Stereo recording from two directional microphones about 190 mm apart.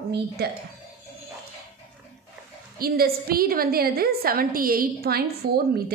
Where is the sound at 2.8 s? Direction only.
50° right (ahead or behind).